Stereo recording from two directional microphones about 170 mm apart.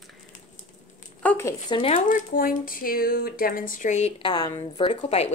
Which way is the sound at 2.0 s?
55° left (ahead or behind).